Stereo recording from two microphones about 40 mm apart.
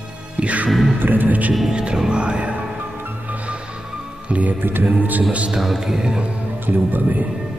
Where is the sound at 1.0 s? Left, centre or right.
Right.